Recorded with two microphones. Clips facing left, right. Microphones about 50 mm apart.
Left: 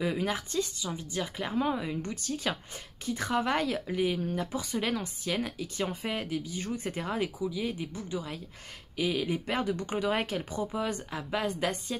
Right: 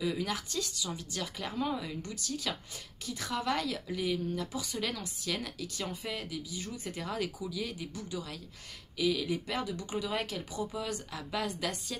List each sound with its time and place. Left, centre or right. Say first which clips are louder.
0.0 s speech: left 3 dB; left